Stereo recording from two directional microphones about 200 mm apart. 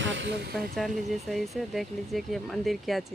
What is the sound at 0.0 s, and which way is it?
Vehicle, 65° right (ahead or behind).